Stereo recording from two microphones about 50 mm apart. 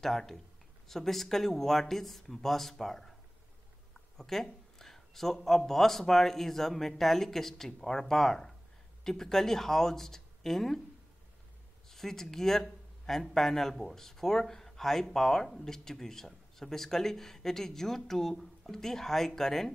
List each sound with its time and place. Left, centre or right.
0.0 s speech: centre
4.2 s a sound: centre
5.7 s speech: centre
11.9 s speech: centre